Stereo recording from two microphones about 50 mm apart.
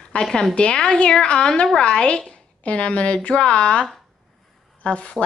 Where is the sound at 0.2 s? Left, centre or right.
Centre.